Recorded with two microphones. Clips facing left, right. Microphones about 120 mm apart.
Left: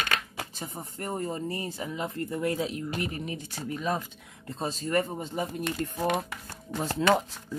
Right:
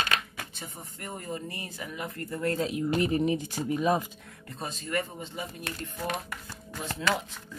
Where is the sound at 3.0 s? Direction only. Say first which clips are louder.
Right 8 dB; 20° right (ahead or behind).